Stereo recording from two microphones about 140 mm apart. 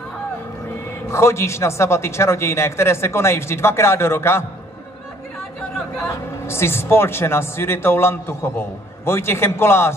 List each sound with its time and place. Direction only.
1.0 s a man's voice: 20° left (ahead or behind)
6.4 s a man's voice: 20° left (ahead or behind)